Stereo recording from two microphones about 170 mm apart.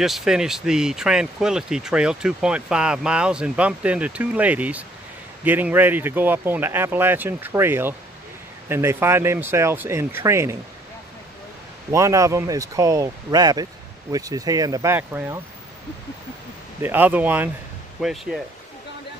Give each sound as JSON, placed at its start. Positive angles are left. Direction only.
{"t": 0.0, "sound": "speech", "side_deg": 0}
{"t": 11.9, "sound": "speech", "side_deg": -20}
{"t": 16.8, "sound": "speech", "side_deg": -10}